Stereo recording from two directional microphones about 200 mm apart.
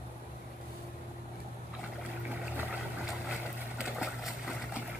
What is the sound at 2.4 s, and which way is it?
Vehicle, 5° right (ahead or behind).